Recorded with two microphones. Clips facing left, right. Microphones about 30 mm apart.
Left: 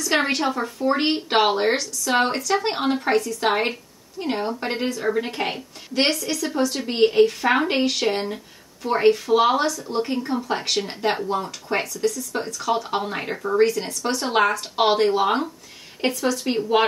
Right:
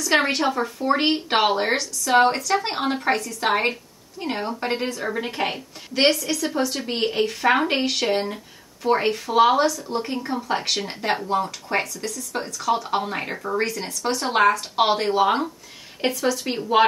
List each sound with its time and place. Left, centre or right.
0.3 s speech: centre
10.2 s speech: centre
11.7 s speech: centre